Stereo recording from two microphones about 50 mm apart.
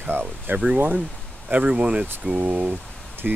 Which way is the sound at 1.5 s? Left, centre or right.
Right.